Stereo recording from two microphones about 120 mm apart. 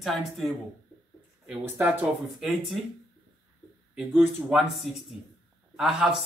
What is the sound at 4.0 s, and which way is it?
Speech, 5° right (ahead or behind).